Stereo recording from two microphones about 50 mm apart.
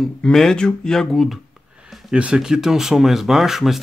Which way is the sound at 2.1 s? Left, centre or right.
Right.